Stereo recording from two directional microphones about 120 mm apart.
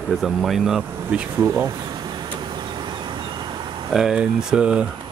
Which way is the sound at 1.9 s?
35° right (ahead or behind).